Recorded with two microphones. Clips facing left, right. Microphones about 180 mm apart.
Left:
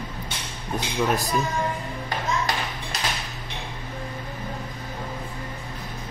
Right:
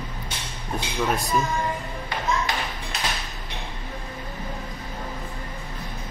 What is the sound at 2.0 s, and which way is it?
Clapping, 40° left (ahead or behind).